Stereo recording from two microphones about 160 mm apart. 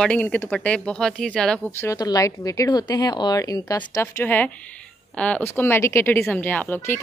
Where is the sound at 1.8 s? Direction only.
20° left (ahead or behind).